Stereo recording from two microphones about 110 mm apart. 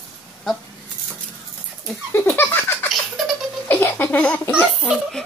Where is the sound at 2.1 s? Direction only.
20° left (ahead or behind).